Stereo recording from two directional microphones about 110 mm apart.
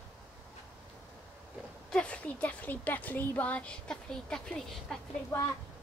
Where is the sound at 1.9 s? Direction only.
10° left (ahead or behind).